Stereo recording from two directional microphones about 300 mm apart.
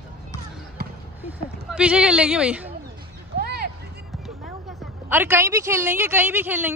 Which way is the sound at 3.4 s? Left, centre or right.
Right.